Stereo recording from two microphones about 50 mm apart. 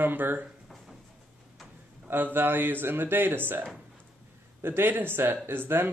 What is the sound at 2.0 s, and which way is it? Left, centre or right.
Speech, right.